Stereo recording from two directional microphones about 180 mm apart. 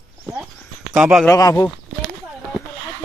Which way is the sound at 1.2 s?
20° left (ahead or behind).